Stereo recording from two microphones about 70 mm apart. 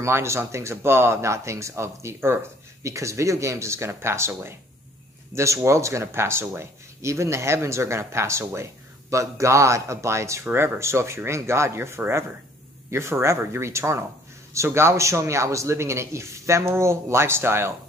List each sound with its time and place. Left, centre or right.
0.0 s speech: right
2.8 s speech: right